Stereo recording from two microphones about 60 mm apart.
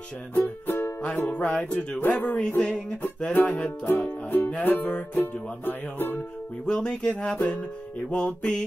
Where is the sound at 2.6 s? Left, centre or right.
Centre.